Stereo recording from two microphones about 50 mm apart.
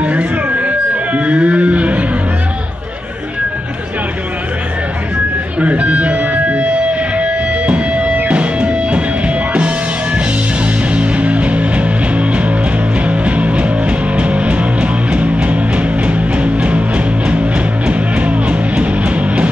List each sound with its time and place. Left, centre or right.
0.0 s music: right
5.6 s music: right